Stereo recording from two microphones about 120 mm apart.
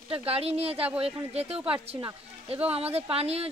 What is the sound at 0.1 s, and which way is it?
Speech, 55° right (ahead or behind).